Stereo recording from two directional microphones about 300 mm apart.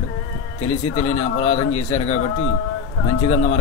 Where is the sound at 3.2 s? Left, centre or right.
Left.